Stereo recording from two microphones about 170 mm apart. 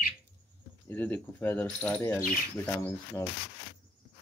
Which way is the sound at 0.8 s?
10° left (ahead or behind).